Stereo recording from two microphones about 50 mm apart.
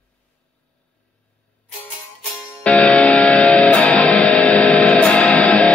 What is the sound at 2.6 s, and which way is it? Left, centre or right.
Music, left.